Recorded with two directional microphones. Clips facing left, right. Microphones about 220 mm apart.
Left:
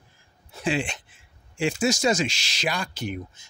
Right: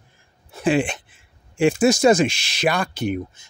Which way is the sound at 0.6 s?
55° right (ahead or behind).